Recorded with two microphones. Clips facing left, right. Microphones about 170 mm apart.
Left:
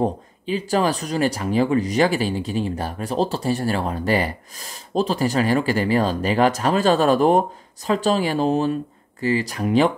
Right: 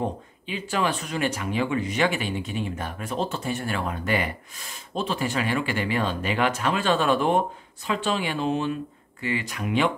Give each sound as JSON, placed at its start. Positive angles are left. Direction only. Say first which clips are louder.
{"t": 0.0, "sound": "speech", "louder": "left 7 dB", "side_deg": 35}